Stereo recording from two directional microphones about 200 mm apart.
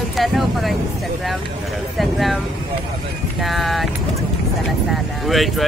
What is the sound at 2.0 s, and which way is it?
Speech, centre (ahead or behind).